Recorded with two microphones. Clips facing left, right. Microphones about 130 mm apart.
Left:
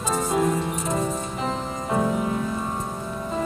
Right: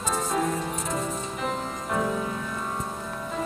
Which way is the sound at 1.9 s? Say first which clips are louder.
Left 4 dB; 25° left (ahead or behind).